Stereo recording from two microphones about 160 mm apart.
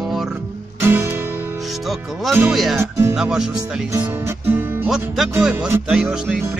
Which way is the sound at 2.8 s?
15° right (ahead or behind).